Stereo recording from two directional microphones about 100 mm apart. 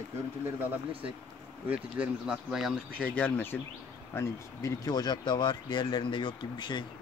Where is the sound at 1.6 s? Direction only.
15° right (ahead or behind).